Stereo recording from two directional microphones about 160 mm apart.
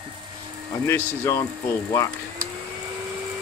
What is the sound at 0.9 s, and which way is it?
Speech, 15° left (ahead or behind).